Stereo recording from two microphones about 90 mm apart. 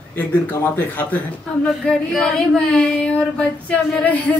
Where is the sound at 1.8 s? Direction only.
5° left (ahead or behind).